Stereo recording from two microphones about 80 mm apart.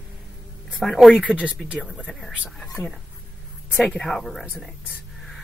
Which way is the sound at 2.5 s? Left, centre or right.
Centre.